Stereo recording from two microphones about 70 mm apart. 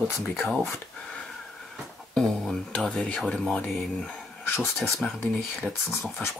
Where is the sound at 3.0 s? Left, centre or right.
Centre.